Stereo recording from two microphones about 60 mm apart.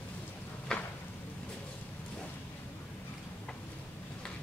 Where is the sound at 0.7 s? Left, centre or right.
Centre.